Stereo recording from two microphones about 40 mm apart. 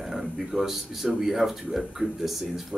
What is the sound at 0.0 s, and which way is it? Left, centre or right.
Speech, centre.